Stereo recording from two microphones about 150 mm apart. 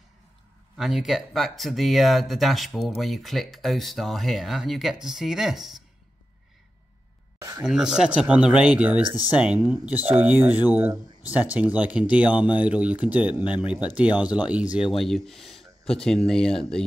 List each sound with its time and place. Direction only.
0.7 s speech: centre (ahead or behind)
7.3 s a sound: 25° right (ahead or behind)
7.6 s speech: 5° right (ahead or behind)